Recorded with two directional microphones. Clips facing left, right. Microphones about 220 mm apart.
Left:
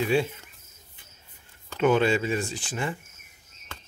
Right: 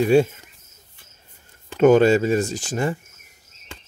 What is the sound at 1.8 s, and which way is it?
Speech, 45° right (ahead or behind).